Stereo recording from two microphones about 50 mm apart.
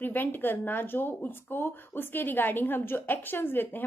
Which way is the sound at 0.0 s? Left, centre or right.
Left.